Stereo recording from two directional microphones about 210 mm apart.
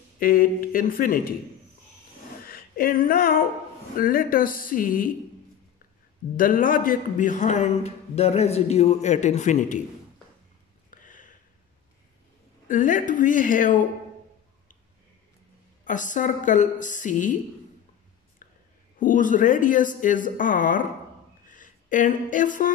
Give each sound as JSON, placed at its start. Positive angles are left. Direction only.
{"t": 0.2, "sound": "speech", "side_deg": 45}
{"t": 2.4, "sound": "a sound", "side_deg": 45}
{"t": 4.0, "sound": "speech", "side_deg": 45}
{"t": 6.3, "sound": "a man's voice", "side_deg": 40}
{"t": 10.9, "sound": "a sound", "side_deg": 40}
{"t": 12.6, "sound": "a man's voice", "side_deg": 40}
{"t": 15.8, "sound": "a man's voice", "side_deg": 35}
{"t": 18.9, "sound": "a man's voice", "side_deg": 40}
{"t": 21.5, "sound": "a sound", "side_deg": 40}